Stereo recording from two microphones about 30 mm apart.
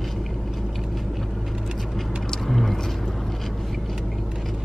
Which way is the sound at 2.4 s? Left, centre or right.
Centre.